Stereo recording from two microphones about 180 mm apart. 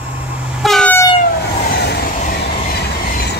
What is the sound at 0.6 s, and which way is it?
Train, 5° left (ahead or behind).